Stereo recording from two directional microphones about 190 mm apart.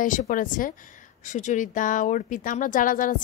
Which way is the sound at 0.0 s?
45° left (ahead or behind).